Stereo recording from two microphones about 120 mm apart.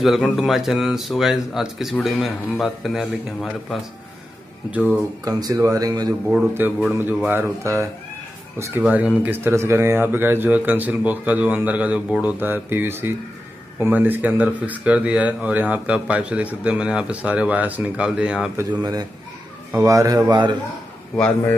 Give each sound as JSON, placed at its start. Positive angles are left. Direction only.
{"t": 0.0, "sound": "speech", "side_deg": 0}
{"t": 5.2, "sound": "speech", "side_deg": -30}
{"t": 6.6, "sound": "a man's voice", "side_deg": -15}
{"t": 8.8, "sound": "speech", "side_deg": -10}
{"t": 18.7, "sound": "a man's voice", "side_deg": -35}